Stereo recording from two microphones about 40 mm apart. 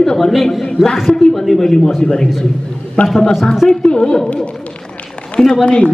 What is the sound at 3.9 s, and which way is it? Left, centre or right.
Speech, left.